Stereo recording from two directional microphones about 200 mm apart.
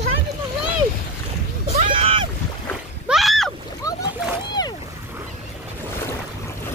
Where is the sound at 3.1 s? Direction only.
Centre (ahead or behind).